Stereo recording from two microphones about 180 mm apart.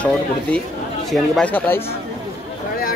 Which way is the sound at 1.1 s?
5° left (ahead or behind).